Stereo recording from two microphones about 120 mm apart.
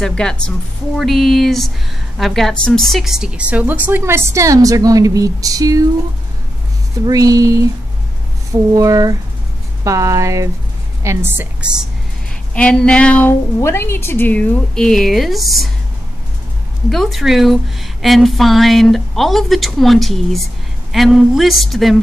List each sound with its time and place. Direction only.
0.0 s a woman's voice: 5° left (ahead or behind); by 5.9 s 30° right (ahead or behind)
7.1 s speech: 30° right (ahead or behind)
8.7 s a woman's voice: 30° right (ahead or behind)
12.5 s a sound: 10° left (ahead or behind)
13.6 s a woman's voice: 20° left (ahead or behind)
14.9 s a woman's voice: centre (ahead or behind)
16.9 s a woman's voice: centre (ahead or behind)